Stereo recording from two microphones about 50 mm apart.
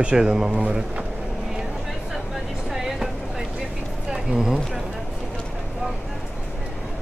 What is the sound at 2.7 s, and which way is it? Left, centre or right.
Vehicle, centre.